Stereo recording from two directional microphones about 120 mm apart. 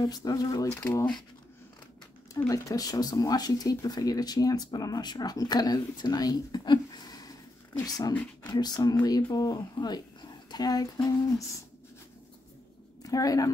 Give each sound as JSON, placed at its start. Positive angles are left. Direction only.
{"t": 0.0, "sound": "speech", "side_deg": 30}
{"t": 2.4, "sound": "speech", "side_deg": 30}
{"t": 13.0, "sound": "a woman's voice", "side_deg": 30}